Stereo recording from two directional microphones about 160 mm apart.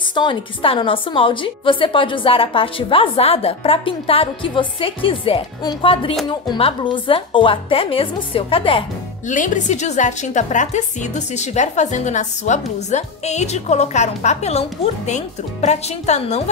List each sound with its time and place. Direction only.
0.1 s a woman's voice: 30° left (ahead or behind)
9.3 s a woman's voice: 50° left (ahead or behind)